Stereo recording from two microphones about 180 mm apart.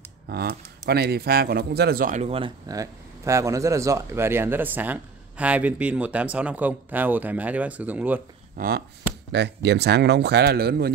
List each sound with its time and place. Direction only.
0.3 s speech: 60° right (ahead or behind); by 2.5 s 35° right (ahead or behind)
2.7 s speech: 20° right (ahead or behind)
8.5 s speech: 55° right (ahead or behind)
9.3 s speech: 70° right (ahead or behind)